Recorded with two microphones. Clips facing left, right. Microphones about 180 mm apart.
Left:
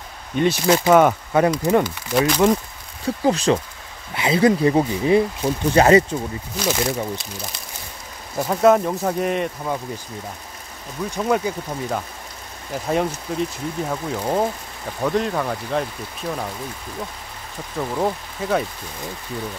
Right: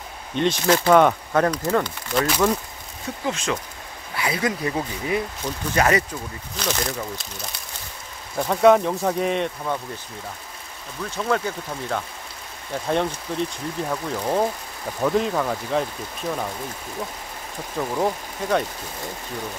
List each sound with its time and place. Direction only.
0.4 s speech: 10° left (ahead or behind)
3.3 s speech: 35° left (ahead or behind)
4.1 s speech: 25° left (ahead or behind)
6.5 s speech: 10° left (ahead or behind)
8.4 s speech: 5° left (ahead or behind)
11.0 s speech: 15° left (ahead or behind)
17.7 s speech: 5° left (ahead or behind)